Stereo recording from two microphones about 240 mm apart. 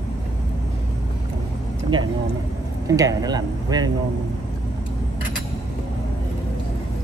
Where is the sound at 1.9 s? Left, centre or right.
Centre.